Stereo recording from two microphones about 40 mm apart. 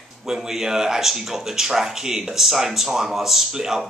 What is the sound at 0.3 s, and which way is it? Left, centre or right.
Speech, centre.